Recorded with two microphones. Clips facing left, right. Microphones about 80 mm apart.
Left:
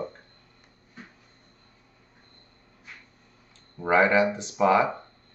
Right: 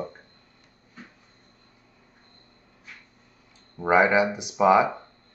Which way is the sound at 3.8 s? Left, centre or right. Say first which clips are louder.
Right 1 dB; centre.